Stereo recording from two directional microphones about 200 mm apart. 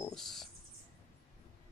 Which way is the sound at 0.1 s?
Centre (ahead or behind).